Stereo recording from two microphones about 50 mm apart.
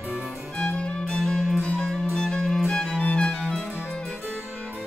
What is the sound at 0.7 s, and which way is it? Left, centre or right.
Music, centre.